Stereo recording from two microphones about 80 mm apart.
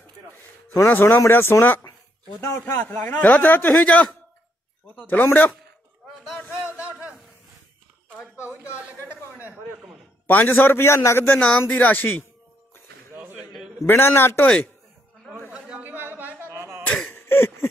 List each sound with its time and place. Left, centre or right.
0.7 s a man's voice: left
5.2 s a man's voice: left
9.4 s a man's voice: right
10.2 s a man's voice: left
11.2 s speech: centre
11.6 s a man's voice: left
13.1 s a sound: right
13.8 s a man's voice: left
15.8 s a sound: right
17.1 s a sound: left